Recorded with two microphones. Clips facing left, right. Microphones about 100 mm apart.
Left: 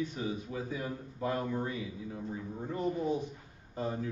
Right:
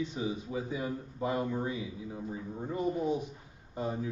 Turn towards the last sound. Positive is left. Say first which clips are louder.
# right 1 dB
turn(degrees=-15)  # may be behind; listen again after turning